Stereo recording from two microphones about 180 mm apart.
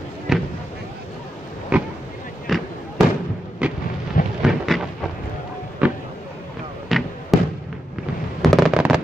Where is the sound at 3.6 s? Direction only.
5° right (ahead or behind).